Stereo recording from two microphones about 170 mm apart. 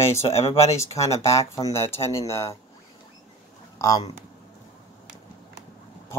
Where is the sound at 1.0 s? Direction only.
15° left (ahead or behind).